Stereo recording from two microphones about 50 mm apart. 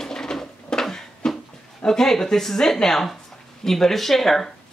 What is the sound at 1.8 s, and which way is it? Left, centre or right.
Speech, centre.